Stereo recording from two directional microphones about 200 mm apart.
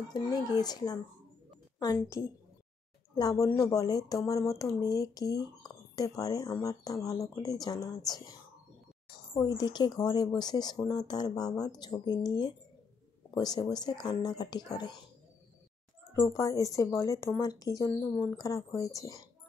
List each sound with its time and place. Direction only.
0.1 s speech: 20° left (ahead or behind)
16.1 s speech: 15° left (ahead or behind)